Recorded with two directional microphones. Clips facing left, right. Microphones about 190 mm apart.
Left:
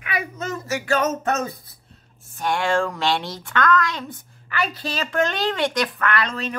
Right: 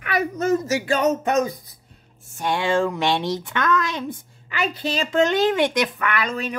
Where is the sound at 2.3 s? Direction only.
20° right (ahead or behind).